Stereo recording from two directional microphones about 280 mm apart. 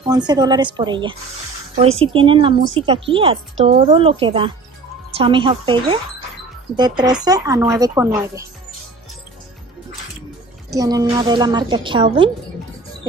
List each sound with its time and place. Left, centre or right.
0.0 s speech: centre
10.7 s speech: centre